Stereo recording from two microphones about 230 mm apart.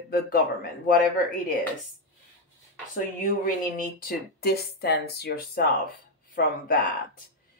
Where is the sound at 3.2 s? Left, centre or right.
Left.